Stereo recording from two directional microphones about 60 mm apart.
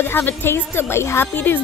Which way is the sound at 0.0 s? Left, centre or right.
Left.